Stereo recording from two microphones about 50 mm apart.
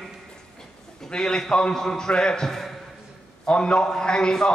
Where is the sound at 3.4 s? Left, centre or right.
Left.